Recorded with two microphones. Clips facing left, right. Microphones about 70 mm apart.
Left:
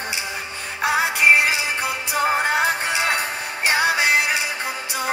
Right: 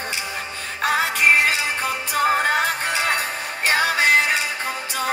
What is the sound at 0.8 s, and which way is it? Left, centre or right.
Music, centre.